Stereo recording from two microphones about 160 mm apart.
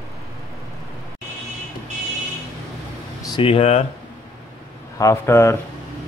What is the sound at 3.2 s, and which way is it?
Speech, 30° left (ahead or behind).